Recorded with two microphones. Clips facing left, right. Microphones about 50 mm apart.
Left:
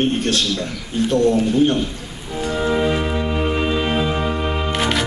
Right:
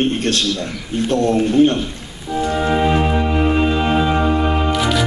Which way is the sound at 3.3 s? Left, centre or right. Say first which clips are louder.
Right 4 dB; right.